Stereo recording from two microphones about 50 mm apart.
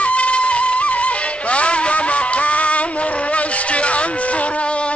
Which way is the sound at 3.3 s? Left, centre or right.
Left.